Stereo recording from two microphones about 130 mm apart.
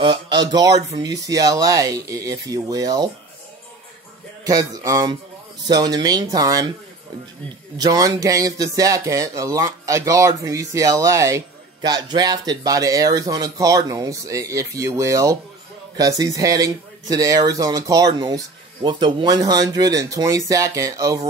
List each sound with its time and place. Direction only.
0.0 s speech: 35° right (ahead or behind)
4.5 s speech: 25° right (ahead or behind)
7.7 s speech: 30° right (ahead or behind)
11.8 s speech: 30° right (ahead or behind)